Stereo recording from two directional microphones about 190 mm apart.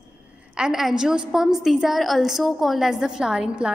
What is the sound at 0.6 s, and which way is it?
A woman's voice, centre (ahead or behind).